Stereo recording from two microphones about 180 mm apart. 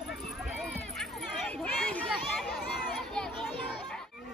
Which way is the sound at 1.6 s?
5° left (ahead or behind).